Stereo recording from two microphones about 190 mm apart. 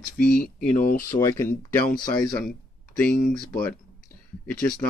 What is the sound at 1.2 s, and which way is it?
Speech, 15° left (ahead or behind).